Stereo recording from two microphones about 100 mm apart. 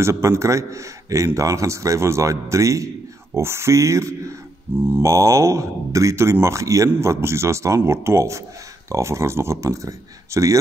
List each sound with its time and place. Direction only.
0.0 s a man's voice: 30° right (ahead or behind)
4.7 s speech: 20° right (ahead or behind)
5.0 s a man's voice: 30° right (ahead or behind)